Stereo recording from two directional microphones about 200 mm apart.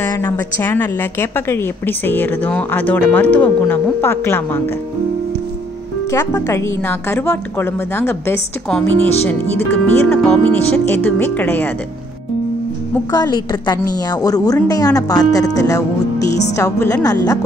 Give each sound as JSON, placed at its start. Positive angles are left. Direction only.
{"t": 0.1, "sound": "a woman's voice", "side_deg": 10}
{"t": 6.1, "sound": "a woman's voice", "side_deg": 15}
{"t": 13.1, "sound": "a woman's voice", "side_deg": 20}